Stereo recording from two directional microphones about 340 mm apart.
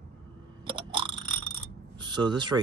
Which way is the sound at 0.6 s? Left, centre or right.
Centre.